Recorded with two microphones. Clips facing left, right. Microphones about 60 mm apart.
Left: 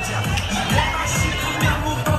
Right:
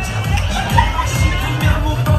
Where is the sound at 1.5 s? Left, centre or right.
Centre.